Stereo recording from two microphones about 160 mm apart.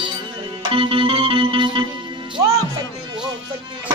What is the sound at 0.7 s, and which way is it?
Music, 35° right (ahead or behind).